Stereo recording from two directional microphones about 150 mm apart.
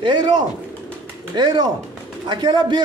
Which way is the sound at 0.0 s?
30° right (ahead or behind).